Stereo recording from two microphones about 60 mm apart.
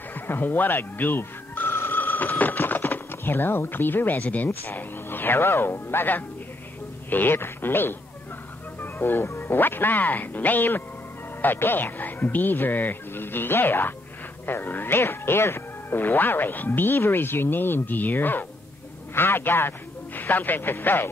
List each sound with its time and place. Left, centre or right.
0.1 s speech: left
1.9 s a sound: left
4.6 s speech: left